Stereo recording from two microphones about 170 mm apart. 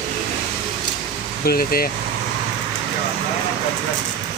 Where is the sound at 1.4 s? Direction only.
60° left (ahead or behind).